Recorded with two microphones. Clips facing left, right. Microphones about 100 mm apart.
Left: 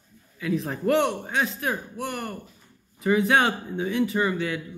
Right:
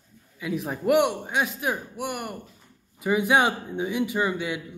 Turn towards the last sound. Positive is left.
turn(degrees=-15)  # may be behind; listen again after turning